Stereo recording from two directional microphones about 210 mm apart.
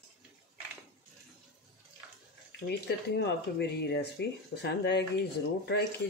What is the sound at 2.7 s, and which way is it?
Speech, 55° left (ahead or behind).